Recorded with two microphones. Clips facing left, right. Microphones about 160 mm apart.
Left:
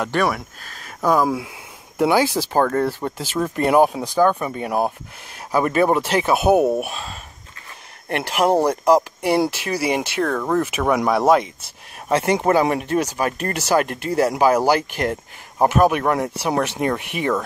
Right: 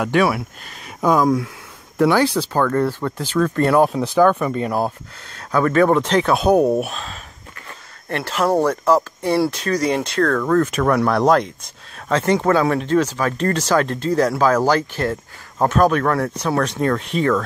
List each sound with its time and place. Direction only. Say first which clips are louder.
0.0 s speech: right 3 dB; 5° right (ahead or behind)
0.8 s speech: right 2 dB; 5° left (ahead or behind)
2.6 s speech: right 2 dB; 30° left (ahead or behind)
3.3 s speech: right 1 dB; 15° left (ahead or behind)
8.1 s speech: left 1 dB; 15° left (ahead or behind)